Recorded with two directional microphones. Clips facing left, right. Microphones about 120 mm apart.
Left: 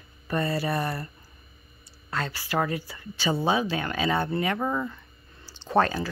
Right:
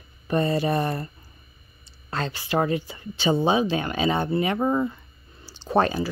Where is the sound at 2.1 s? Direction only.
25° right (ahead or behind).